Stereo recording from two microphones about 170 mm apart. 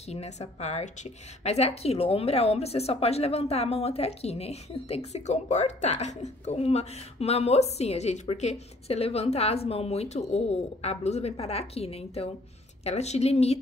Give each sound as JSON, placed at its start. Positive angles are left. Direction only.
{"t": 0.1, "sound": "a woman's voice", "side_deg": 40}